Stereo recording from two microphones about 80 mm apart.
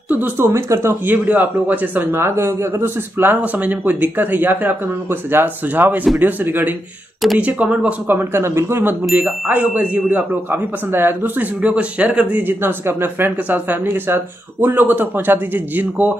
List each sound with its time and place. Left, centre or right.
0.1 s speech: right
0.5 s speech: right
1.0 s speech: right
9.1 s speech: centre